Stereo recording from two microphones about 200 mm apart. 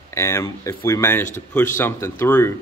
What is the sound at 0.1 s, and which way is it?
Speech, 15° left (ahead or behind).